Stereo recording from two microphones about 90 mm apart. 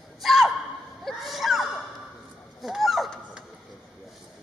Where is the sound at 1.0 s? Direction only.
Centre (ahead or behind).